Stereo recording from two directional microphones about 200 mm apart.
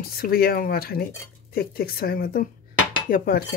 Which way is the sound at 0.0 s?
50° left (ahead or behind).